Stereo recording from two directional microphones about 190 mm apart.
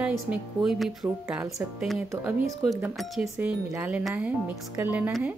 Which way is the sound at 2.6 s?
Centre (ahead or behind).